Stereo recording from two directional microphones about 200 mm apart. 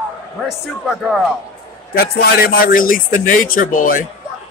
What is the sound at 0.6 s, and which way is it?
Speech, centre (ahead or behind).